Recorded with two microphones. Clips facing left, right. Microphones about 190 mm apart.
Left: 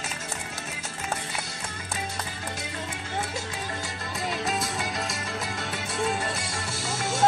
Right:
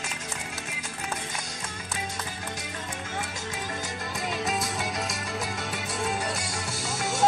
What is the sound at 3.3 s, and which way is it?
Music, 15° right (ahead or behind).